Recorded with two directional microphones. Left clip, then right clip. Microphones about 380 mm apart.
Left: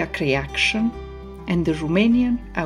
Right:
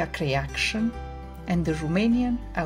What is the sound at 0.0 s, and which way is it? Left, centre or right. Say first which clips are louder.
Speech: left 5 dB; right.